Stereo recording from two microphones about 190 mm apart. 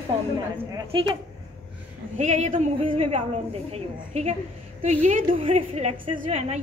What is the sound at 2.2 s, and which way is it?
A woman's voice, 40° right (ahead or behind).